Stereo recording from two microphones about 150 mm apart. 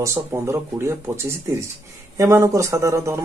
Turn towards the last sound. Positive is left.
turn(degrees=-20)  # may be behind; listen again after turning